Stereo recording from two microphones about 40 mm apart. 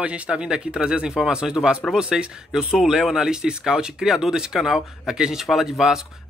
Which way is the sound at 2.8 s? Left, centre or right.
Centre.